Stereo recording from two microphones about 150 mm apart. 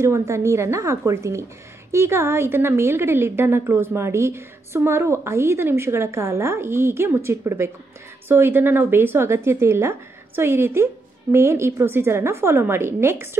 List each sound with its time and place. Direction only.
0.0 s a woman's voice: 20° right (ahead or behind)